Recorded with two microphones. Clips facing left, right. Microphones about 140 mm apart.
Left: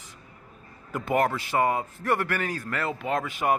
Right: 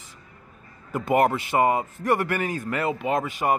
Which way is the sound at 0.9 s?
5° right (ahead or behind).